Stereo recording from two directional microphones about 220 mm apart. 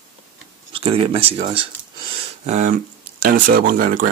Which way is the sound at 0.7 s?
25° right (ahead or behind).